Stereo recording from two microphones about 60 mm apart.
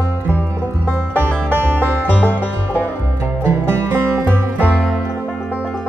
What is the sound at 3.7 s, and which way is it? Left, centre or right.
Music, right.